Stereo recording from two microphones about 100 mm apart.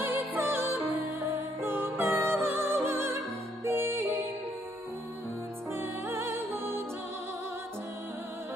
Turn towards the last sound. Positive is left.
turn(degrees=-20)  # may be behind; listen again after turning